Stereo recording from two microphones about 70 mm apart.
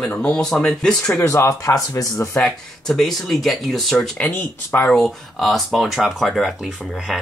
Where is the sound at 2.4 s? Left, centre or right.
Centre.